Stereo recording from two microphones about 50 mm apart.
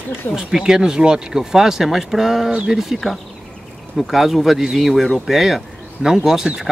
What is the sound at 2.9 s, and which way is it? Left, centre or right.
Speech, centre.